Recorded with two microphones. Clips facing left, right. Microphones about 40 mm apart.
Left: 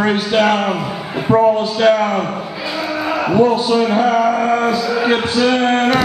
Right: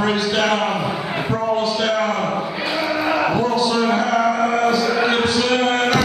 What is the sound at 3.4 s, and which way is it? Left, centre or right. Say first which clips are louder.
Speech: left 4 dB; left.